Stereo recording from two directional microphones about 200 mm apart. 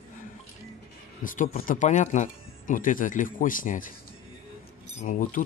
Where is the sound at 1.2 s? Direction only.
40° left (ahead or behind).